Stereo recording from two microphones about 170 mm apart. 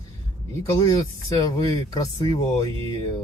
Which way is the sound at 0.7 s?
20° left (ahead or behind).